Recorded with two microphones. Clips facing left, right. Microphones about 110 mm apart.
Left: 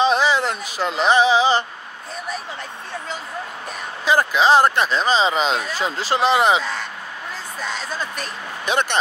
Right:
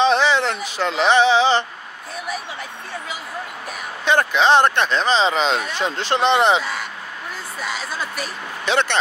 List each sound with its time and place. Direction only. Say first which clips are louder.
0.0 s a sound: right 1 dB; 10° left (ahead or behind)
4.0 s speech: even; 5° left (ahead or behind)
8.6 s speech: right 1 dB; 15° left (ahead or behind)